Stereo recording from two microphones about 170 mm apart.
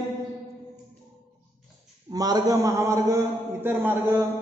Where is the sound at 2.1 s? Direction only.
20° right (ahead or behind).